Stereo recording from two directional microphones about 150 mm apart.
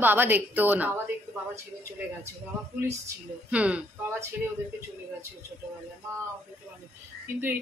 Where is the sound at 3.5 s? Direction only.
10° right (ahead or behind).